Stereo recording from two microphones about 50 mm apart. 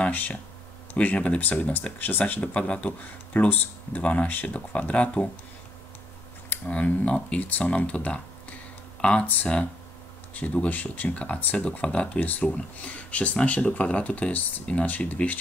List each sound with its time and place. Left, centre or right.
0.1 s speech: left
6.5 s speech: left
7.4 s speech: left
10.3 s speech: left
12.2 s speech: left